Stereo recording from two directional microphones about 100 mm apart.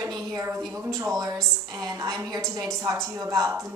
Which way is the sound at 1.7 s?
35° right (ahead or behind).